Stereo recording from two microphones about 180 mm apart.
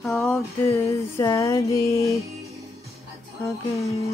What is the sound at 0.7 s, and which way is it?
Music, 15° left (ahead or behind).